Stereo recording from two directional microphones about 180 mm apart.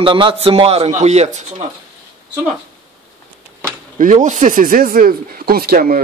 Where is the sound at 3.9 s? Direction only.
40° right (ahead or behind).